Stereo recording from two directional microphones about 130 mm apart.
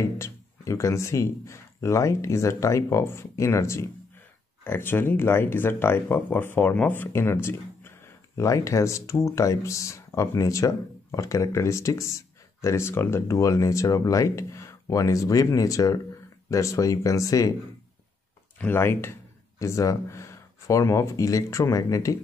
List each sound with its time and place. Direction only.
0.0 s speech: 20° left (ahead or behind)
18.6 s speech: 15° left (ahead or behind)